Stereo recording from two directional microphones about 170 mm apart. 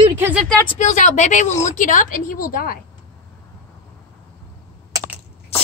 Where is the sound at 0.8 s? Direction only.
45° left (ahead or behind).